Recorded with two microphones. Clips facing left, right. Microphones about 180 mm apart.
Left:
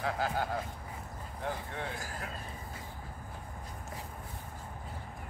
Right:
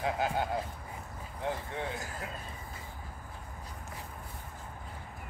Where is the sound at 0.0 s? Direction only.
20° right (ahead or behind).